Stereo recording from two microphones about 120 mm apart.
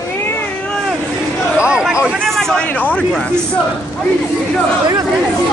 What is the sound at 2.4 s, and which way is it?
Speech, 5° left (ahead or behind).